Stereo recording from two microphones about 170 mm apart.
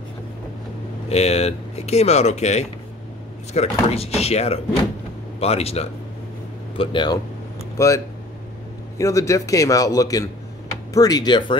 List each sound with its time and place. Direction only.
1.0 s a man's voice: 40° left (ahead or behind)
7.7 s a man's voice: 15° left (ahead or behind)